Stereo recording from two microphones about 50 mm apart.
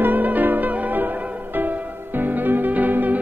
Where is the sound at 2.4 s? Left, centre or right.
Right.